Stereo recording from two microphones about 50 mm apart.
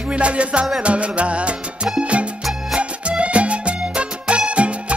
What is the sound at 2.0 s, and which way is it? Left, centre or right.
Music, right.